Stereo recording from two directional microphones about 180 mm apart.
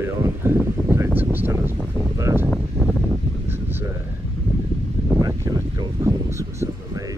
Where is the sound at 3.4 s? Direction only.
10° right (ahead or behind).